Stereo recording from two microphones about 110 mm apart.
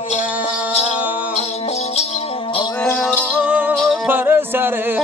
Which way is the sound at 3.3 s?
10° right (ahead or behind).